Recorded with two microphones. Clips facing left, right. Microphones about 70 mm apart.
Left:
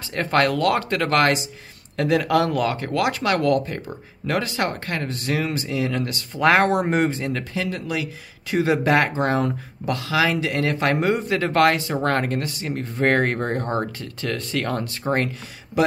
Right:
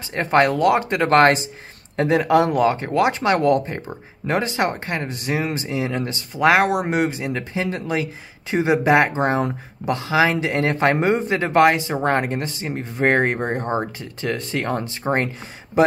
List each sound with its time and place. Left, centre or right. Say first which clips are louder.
0.1 s speech: right 3 dB; right
6.3 s speech: right 1 dB; centre